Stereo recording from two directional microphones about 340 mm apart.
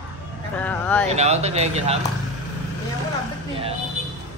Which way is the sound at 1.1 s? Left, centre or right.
Centre.